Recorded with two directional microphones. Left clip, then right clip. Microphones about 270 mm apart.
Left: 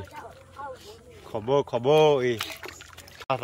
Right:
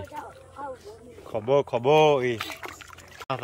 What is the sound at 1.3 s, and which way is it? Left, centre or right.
Speech, centre.